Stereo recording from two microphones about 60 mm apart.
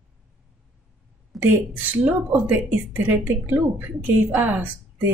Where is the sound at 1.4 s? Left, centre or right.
Right.